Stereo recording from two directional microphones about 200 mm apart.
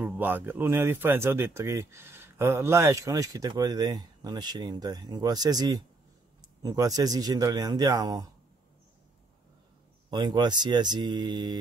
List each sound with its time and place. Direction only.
0.0 s a man's voice: 10° right (ahead or behind)
10.1 s a man's voice: 20° right (ahead or behind)